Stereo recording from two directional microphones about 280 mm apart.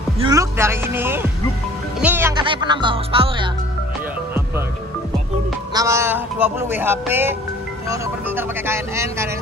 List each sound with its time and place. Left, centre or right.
0.2 s speech: centre
5.7 s speech: centre